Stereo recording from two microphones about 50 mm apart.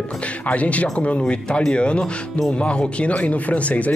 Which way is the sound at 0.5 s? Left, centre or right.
Left.